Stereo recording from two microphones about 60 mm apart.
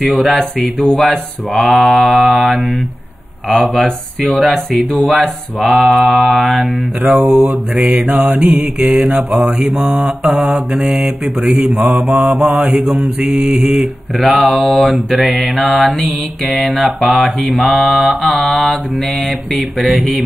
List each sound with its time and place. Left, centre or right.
0.0 s mantra: centre
7.7 s mantra: right
8.0 s mantra: centre
13.3 s mantra: centre
14.1 s mantra: centre
19.8 s mantra: centre